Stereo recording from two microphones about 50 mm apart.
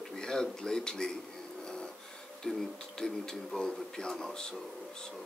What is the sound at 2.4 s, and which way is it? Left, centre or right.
Speech, centre.